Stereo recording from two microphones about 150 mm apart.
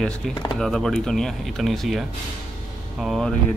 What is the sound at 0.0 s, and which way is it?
Speech, 5° left (ahead or behind).